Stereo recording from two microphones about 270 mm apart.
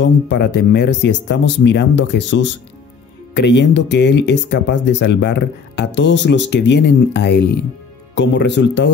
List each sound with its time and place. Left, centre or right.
0.0 s speech: left